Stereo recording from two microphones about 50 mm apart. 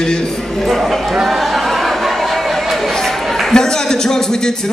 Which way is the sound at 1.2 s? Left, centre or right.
Centre.